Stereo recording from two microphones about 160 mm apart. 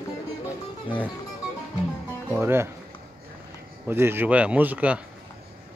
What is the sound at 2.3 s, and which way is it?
Speech, 15° right (ahead or behind).